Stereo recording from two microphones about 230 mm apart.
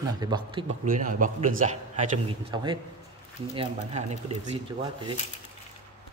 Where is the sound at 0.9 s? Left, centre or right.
Right.